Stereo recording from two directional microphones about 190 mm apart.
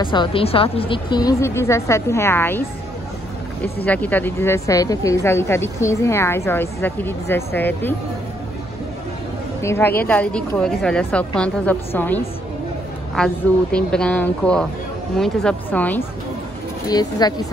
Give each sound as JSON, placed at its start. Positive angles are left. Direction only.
{"t": 0.0, "sound": "speech", "side_deg": 25}
{"t": 3.8, "sound": "speech", "side_deg": 10}
{"t": 9.6, "sound": "speech", "side_deg": 15}
{"t": 16.8, "sound": "speech", "side_deg": 20}